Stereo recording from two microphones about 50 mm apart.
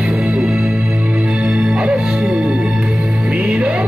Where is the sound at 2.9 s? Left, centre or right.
Right.